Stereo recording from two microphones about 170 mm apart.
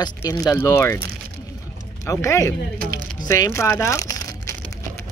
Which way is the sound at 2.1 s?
20° left (ahead or behind).